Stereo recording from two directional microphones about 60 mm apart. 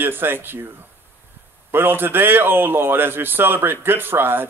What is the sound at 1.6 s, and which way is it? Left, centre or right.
A man's voice, right.